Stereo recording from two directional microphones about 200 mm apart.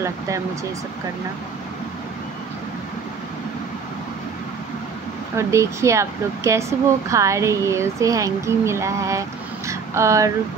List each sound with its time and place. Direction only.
5.3 s speech: 15° right (ahead or behind)